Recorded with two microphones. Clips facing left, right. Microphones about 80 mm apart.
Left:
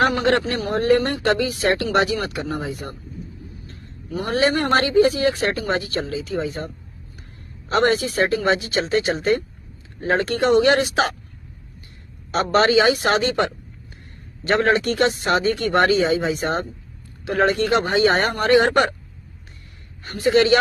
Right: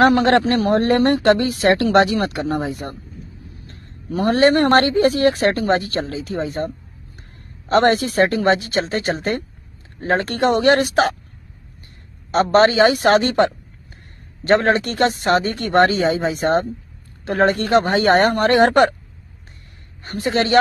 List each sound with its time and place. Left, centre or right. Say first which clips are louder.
0.0 s a man's voice: right 5 dB; right
12.3 s a man's voice: right 4 dB; right
20.1 s a man's voice: left 3 dB; right